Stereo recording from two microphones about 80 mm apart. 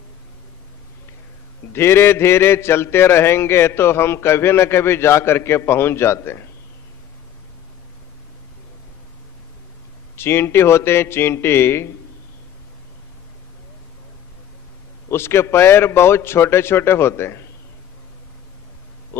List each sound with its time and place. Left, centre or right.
1.7 s a man's voice: left
10.1 s a man's voice: left
15.0 s a man's voice: left